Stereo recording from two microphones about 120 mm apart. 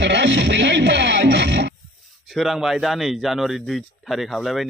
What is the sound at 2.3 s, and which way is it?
Speech, centre (ahead or behind).